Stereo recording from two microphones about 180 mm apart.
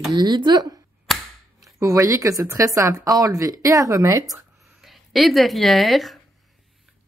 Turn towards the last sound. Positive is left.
turn(degrees=0)  # may be behind; listen again after turning